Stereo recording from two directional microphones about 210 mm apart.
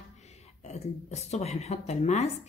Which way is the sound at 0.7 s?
30° left (ahead or behind).